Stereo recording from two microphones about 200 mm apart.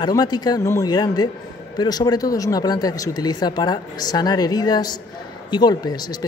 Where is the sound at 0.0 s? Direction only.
20° left (ahead or behind).